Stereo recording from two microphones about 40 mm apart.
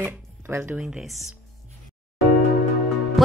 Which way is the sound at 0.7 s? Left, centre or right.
Right.